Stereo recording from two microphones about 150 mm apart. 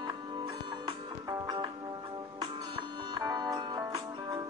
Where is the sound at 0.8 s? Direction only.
30° right (ahead or behind).